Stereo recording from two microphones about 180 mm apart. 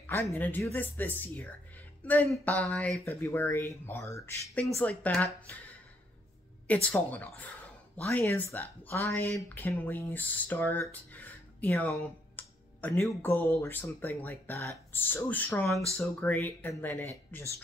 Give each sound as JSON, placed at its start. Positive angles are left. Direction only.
{"t": 0.0, "sound": "speech", "side_deg": 15}
{"t": 6.7, "sound": "speech", "side_deg": 10}